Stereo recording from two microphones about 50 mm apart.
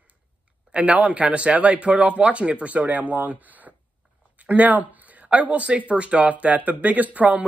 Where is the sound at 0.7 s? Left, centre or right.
Right.